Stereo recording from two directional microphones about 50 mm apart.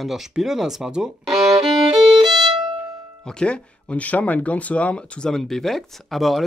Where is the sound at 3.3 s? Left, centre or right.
Centre.